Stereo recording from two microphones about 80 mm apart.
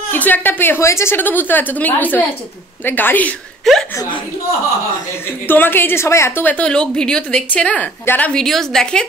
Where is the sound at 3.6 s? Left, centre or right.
Centre.